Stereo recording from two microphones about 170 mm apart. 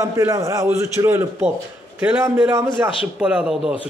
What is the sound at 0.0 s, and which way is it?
A man's voice, 20° right (ahead or behind).